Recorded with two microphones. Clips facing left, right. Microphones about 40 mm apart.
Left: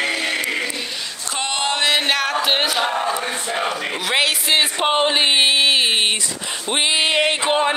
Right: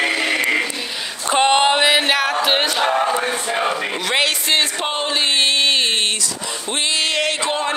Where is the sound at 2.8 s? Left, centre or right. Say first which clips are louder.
Right 3 dB; centre.